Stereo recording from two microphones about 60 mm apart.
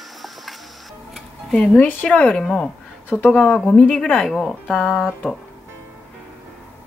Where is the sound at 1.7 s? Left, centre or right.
Left.